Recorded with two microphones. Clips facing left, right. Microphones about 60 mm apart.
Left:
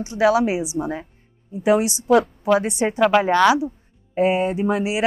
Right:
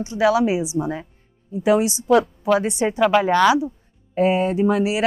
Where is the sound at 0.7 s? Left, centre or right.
Left.